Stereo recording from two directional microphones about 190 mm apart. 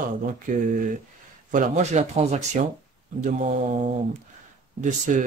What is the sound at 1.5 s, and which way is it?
Speech, 40° right (ahead or behind).